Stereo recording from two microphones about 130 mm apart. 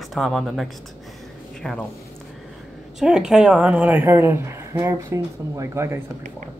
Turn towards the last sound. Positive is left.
turn(degrees=-20)  # may be behind; listen again after turning